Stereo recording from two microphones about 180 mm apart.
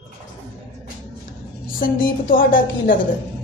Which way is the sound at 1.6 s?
50° left (ahead or behind).